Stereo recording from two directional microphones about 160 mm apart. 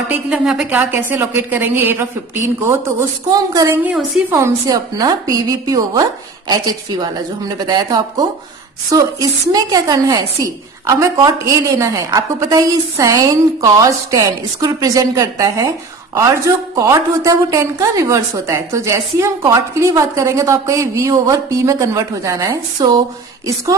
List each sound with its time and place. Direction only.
0.1 s a woman's voice: 5° right (ahead or behind)
3.3 s a woman's voice: 25° right (ahead or behind)